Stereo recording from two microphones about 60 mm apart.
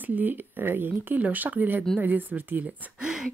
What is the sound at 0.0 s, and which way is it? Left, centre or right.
Speech, right.